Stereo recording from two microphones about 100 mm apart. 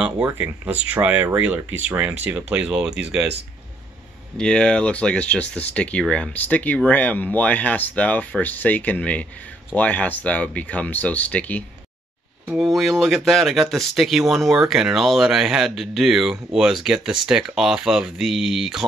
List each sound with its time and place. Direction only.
0.3 s speech: 20° right (ahead or behind)
4.4 s speech: 10° left (ahead or behind)
12.5 s speech: centre (ahead or behind)